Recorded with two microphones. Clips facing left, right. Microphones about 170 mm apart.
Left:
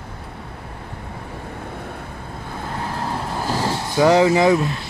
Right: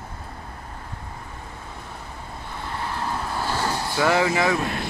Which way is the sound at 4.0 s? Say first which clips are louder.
Left 7 dB; 20° left (ahead or behind).